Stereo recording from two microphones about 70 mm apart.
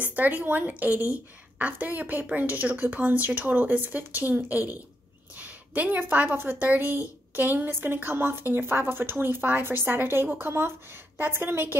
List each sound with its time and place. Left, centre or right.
0.0 s a woman's voice: right